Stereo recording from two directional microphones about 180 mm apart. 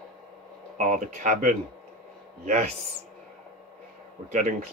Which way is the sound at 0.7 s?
45° right (ahead or behind).